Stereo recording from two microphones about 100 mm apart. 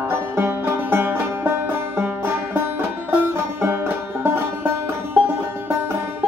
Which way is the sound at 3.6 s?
25° right (ahead or behind).